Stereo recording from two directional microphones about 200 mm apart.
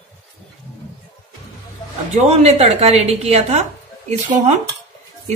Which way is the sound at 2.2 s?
30° right (ahead or behind).